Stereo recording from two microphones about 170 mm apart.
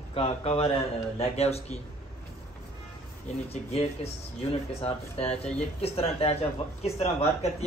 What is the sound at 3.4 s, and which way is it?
Speech, 35° left (ahead or behind).